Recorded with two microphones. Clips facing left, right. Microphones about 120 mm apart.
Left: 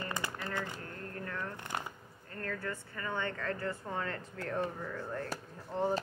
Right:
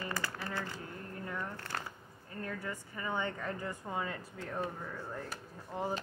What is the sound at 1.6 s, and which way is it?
Shuffling cards, 20° left (ahead or behind).